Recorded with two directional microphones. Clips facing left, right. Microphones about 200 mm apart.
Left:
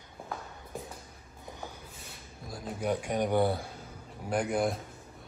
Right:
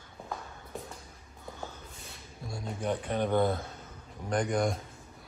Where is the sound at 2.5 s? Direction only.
Centre (ahead or behind).